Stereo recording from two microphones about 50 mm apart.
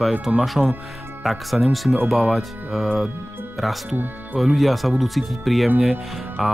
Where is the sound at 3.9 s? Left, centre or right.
Right.